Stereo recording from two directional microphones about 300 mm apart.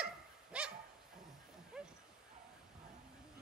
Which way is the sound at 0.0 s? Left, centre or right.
Centre.